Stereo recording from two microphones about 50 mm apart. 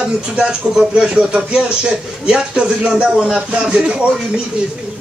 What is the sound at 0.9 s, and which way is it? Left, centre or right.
Speech, centre.